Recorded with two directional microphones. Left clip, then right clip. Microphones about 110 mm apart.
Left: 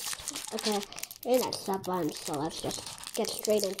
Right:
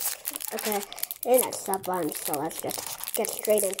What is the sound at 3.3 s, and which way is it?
Speech, 20° left (ahead or behind).